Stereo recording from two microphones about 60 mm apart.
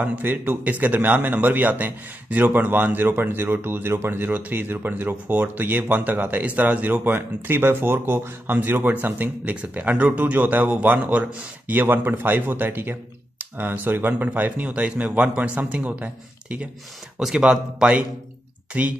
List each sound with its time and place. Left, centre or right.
0.0 s speech: right